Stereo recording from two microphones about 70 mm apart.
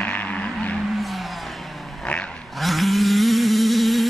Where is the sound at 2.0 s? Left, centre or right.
Centre.